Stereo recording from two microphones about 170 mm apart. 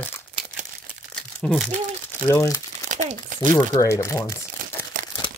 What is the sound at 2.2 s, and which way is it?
Speech, 20° left (ahead or behind).